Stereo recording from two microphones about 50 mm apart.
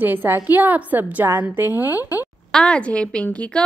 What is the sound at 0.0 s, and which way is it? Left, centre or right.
A woman's voice, right.